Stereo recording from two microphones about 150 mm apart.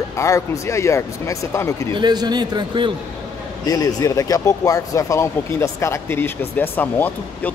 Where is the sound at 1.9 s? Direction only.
30° right (ahead or behind).